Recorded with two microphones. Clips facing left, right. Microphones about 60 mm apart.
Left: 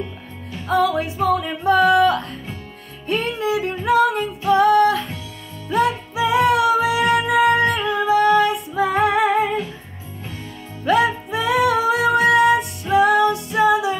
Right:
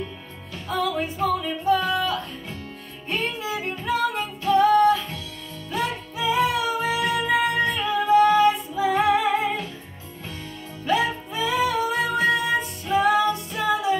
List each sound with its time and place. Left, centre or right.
0.7 s music: left
5.7 s music: left
10.9 s music: left